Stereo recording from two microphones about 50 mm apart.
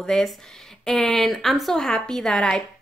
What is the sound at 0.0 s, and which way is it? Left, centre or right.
A woman's voice, centre.